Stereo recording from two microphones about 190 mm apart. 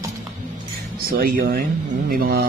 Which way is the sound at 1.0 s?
50° right (ahead or behind).